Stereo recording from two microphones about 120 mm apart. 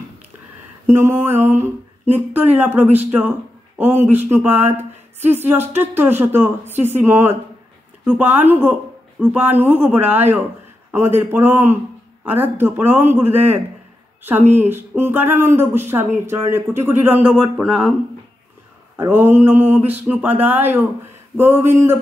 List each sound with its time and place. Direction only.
0.8 s a man's voice: 20° right (ahead or behind); by 17.9 s centre (ahead or behind)
19.0 s a man's voice: 15° right (ahead or behind)